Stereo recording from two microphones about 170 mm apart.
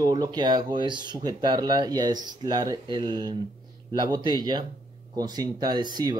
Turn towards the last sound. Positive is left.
turn(degrees=-25)  # may be behind; listen again after turning